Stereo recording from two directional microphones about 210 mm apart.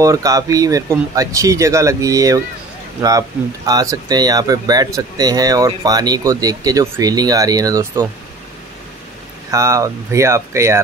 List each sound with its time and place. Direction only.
0.0 s speech: 15° right (ahead or behind)
9.5 s speech: 15° right (ahead or behind)